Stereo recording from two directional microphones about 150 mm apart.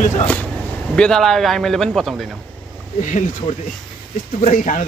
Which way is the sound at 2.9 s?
55° left (ahead or behind).